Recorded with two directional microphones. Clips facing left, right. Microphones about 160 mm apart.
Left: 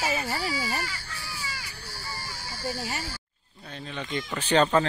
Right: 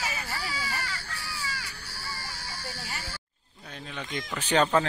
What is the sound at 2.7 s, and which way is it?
Speech, 25° left (ahead or behind).